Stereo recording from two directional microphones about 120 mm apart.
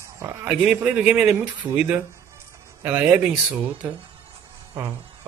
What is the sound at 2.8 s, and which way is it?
Speech, 15° right (ahead or behind).